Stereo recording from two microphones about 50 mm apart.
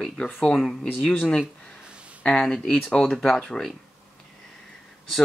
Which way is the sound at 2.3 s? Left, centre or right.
Centre.